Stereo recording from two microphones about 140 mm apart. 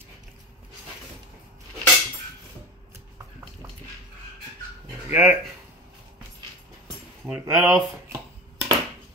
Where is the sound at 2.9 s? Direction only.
20° right (ahead or behind).